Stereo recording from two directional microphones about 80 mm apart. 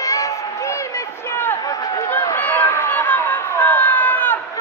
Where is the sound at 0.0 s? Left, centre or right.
Left.